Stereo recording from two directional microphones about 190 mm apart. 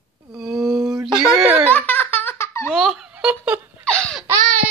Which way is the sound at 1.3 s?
10° right (ahead or behind).